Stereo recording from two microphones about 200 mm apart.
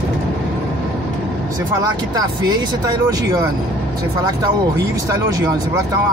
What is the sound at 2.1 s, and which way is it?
Speech, 20° right (ahead or behind).